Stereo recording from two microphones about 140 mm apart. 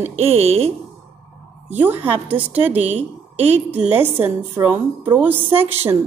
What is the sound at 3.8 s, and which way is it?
A woman's voice, 15° right (ahead or behind).